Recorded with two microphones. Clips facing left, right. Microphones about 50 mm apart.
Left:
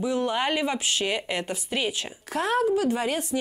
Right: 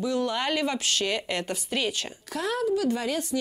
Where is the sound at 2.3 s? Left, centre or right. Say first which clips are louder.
Left 3 dB; left.